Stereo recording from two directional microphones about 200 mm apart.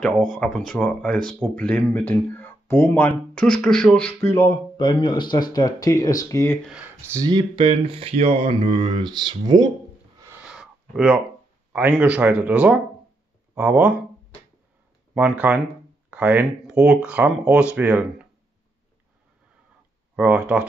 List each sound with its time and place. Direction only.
0.0 s speech: 5° left (ahead or behind)
6.6 s speech: 5° right (ahead or behind)
7.1 s speech: 20° right (ahead or behind)
10.2 s a sound: 10° right (ahead or behind)
11.7 s speech: 5° right (ahead or behind)
15.1 s speech: 5° right (ahead or behind)
20.2 s speech: 5° right (ahead or behind)